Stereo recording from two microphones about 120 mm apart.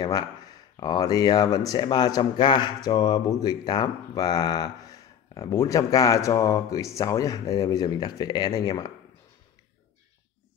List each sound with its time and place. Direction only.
0.0 s speech: 35° left (ahead or behind)